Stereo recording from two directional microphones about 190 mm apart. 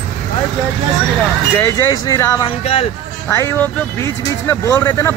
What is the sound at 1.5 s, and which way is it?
A man's voice, 15° left (ahead or behind).